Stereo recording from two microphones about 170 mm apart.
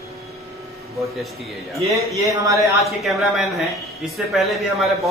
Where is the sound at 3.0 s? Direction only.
Centre (ahead or behind).